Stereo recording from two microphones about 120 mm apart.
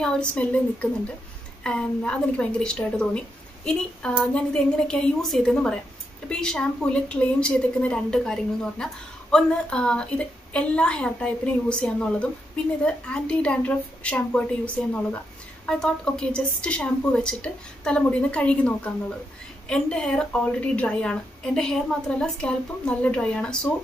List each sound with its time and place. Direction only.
0.0 s a woman's voice: 10° left (ahead or behind)